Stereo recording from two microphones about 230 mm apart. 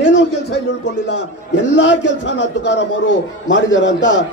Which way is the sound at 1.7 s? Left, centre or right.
Left.